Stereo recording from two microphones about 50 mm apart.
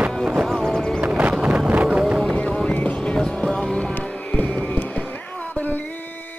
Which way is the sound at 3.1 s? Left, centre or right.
Centre.